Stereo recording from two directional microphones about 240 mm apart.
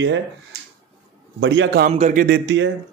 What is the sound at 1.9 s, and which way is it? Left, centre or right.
Speech, right.